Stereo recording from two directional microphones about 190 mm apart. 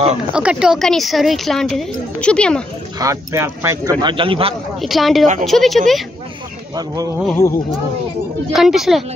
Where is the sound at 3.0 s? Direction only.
15° right (ahead or behind).